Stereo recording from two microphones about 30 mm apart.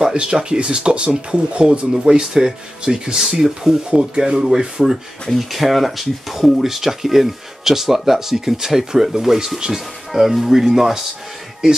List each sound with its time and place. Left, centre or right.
0.0 s speech: right
3.2 s speech: centre
5.5 s speech: centre